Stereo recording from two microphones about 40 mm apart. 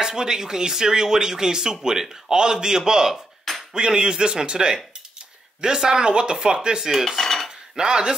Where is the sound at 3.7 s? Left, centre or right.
Right.